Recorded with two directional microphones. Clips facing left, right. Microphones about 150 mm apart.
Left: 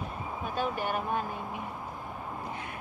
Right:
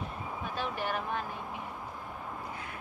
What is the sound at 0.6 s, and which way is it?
Speech, 45° left (ahead or behind).